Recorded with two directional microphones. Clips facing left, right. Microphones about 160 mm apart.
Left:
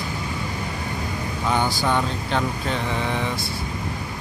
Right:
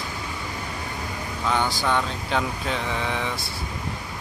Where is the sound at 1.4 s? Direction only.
10° left (ahead or behind).